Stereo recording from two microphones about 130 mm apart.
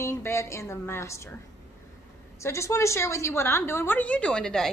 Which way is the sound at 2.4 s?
20° left (ahead or behind).